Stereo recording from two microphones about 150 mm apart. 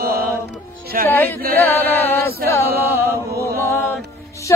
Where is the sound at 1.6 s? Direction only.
10° left (ahead or behind).